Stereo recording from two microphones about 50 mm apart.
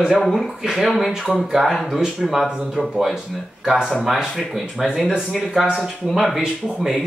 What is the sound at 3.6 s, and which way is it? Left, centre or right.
Speech, centre.